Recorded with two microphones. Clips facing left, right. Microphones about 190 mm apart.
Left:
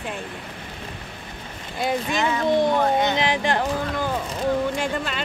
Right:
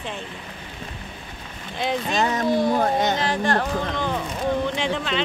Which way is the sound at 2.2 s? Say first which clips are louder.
Right 3 dB; 40° right (ahead or behind).